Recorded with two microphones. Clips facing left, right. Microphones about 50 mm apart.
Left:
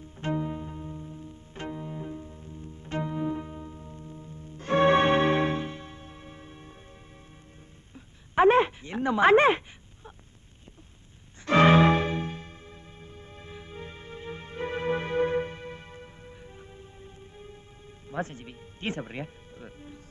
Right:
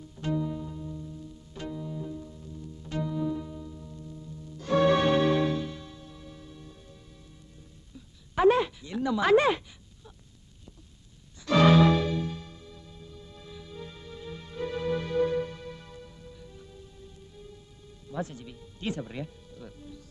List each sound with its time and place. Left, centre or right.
0.0 s bowed string instrument: left
7.9 s a sound: left
11.4 s music: left